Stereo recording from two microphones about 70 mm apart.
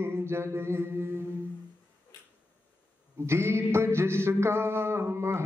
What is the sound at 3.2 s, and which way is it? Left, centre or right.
Music, right.